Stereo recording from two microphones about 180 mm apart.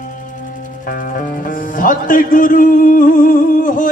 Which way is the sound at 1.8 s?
50° left (ahead or behind).